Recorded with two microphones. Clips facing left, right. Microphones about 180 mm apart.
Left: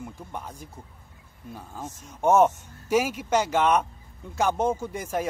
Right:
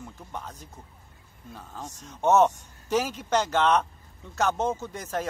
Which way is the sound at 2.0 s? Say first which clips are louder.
Left 1 dB; 10° left (ahead or behind).